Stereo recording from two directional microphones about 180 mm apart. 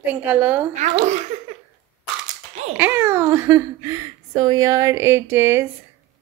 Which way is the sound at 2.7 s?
10° right (ahead or behind).